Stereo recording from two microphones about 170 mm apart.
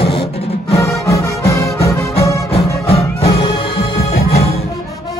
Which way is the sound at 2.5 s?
35° left (ahead or behind).